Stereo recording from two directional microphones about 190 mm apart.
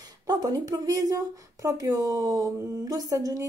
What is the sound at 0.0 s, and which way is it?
Speech, 20° right (ahead or behind).